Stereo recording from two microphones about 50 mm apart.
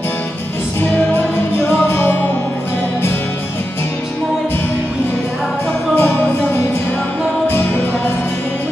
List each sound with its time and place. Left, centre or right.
0.7 s music: left
1.6 s music: left
5.9 s music: left